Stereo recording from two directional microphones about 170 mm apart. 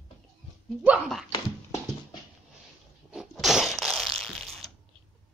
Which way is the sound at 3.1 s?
5° right (ahead or behind).